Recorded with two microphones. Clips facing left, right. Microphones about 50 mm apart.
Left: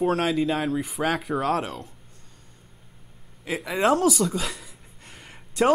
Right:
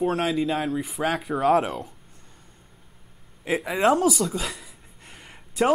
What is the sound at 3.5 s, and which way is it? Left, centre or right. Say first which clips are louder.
Speech: right 1 dB; centre.